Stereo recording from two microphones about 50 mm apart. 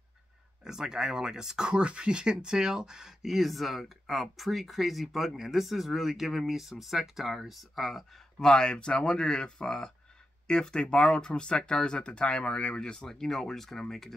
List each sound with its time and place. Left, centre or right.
0.7 s speech: centre
8.4 s speech: centre